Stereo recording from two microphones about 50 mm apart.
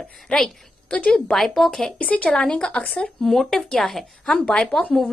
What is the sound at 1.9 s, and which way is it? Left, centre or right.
Speech, left.